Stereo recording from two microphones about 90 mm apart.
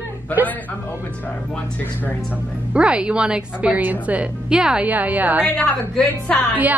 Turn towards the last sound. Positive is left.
turn(degrees=15)  # may be behind; listen again after turning